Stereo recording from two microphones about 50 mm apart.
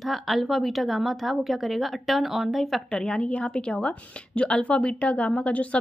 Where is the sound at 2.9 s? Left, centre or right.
Centre.